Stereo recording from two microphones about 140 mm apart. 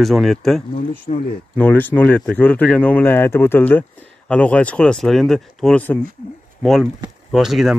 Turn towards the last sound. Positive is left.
turn(degrees=0)  # may be behind; listen again after turning